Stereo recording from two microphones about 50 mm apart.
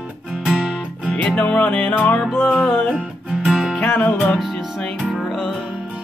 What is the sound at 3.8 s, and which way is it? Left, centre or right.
Music, left.